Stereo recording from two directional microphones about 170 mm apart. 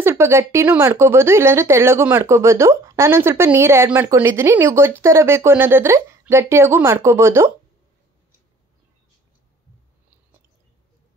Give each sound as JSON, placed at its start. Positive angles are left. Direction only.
{"t": 0.0, "sound": "speech", "side_deg": -15}